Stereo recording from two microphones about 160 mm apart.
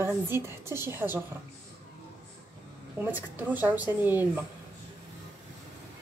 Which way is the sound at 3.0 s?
10° right (ahead or behind).